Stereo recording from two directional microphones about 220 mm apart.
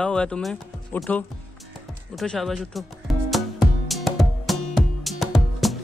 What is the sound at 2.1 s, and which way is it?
Music, centre (ahead or behind).